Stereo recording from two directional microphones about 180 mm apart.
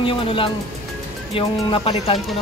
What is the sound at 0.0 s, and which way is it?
Speech, 30° left (ahead or behind).